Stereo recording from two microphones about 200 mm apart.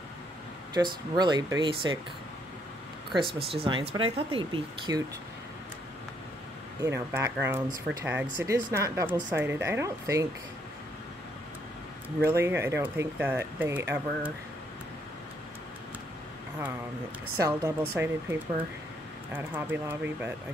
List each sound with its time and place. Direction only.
0.7 s speech: 20° right (ahead or behind)
3.4 s speech: 25° right (ahead or behind)
6.8 s speech: 15° right (ahead or behind)
12.2 s speech: 10° right (ahead or behind)
17.4 s speech: 15° right (ahead or behind)
19.3 s speech: 10° right (ahead or behind)